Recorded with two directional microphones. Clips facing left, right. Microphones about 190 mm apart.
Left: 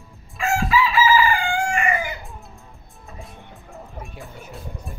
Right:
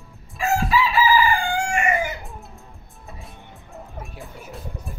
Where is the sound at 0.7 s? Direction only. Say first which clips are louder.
Left 2 dB; 35° right (ahead or behind).